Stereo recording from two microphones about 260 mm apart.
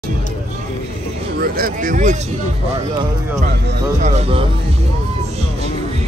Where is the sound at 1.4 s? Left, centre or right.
Right.